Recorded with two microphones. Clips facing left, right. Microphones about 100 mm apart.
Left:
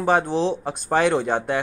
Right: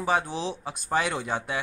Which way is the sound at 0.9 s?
65° left (ahead or behind).